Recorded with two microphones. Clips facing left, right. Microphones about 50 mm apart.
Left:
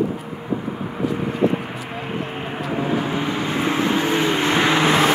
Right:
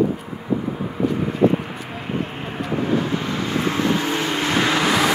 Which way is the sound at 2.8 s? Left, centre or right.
Centre.